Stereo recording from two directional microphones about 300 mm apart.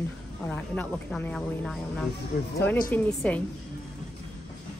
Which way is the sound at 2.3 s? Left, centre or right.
Left.